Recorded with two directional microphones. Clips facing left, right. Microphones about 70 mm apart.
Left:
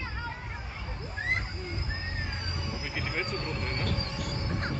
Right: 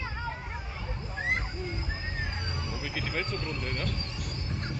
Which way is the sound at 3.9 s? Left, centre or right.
Left.